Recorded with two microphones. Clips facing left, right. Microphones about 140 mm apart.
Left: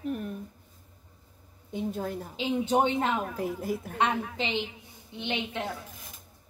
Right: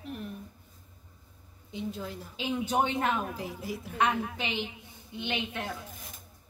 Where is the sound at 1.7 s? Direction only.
50° left (ahead or behind).